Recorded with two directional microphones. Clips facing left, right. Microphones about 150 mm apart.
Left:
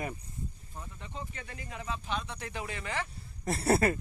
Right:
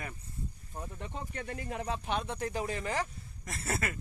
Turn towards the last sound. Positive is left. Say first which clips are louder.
# left 10 dB
turn(degrees=35)  # may be behind; listen again after turning